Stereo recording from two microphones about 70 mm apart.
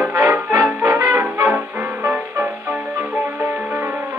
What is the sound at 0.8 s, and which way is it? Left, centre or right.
Music, right.